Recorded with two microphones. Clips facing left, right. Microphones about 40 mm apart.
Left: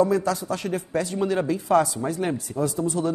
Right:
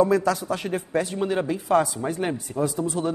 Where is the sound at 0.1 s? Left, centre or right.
Right.